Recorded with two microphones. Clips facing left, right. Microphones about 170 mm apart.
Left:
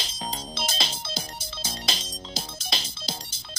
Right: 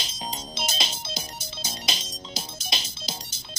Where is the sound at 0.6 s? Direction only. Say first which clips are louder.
Even; 30° left (ahead or behind).